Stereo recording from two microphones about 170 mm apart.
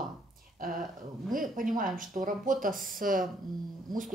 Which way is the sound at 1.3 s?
50° right (ahead or behind).